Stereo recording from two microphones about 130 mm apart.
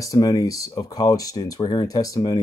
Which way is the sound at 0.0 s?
25° left (ahead or behind).